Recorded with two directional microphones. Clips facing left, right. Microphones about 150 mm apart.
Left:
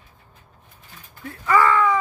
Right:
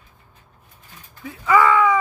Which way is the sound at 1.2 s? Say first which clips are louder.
Right 2 dB; 10° right (ahead or behind).